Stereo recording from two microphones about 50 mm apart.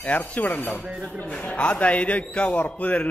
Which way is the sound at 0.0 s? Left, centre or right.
Left.